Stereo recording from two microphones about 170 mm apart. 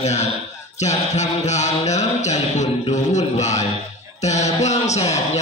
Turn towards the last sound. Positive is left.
turn(degrees=40)  # may be behind; listen again after turning